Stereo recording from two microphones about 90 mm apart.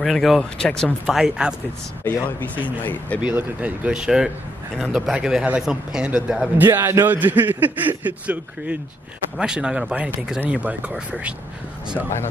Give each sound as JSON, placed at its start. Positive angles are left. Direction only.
{"t": 0.0, "sound": "speech", "side_deg": 0}
{"t": 1.0, "sound": "speech", "side_deg": -5}
{"t": 2.8, "sound": "speech", "side_deg": 20}
{"t": 3.2, "sound": "a man's voice", "side_deg": -15}
{"t": 6.6, "sound": "a man's voice", "side_deg": -25}